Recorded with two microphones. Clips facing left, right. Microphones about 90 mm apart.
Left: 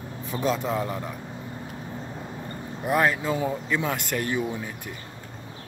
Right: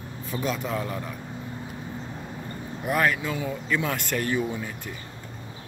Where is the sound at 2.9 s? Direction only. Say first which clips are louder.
Left 2 dB; 25° left (ahead or behind).